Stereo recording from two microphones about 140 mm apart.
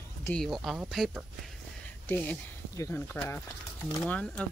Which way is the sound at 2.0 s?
10° left (ahead or behind).